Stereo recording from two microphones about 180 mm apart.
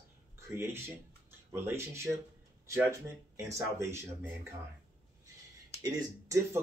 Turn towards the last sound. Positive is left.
turn(degrees=-15)  # may be behind; listen again after turning